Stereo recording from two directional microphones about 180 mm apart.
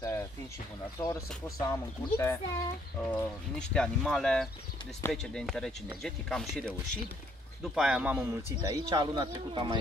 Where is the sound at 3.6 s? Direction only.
5° left (ahead or behind).